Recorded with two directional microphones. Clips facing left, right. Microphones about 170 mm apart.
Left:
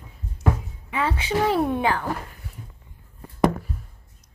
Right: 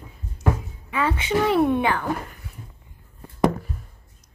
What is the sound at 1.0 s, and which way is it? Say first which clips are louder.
Speech: right 1 dB; 35° left (ahead or behind).